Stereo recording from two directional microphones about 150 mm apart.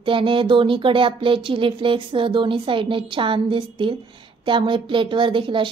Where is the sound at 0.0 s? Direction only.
35° right (ahead or behind).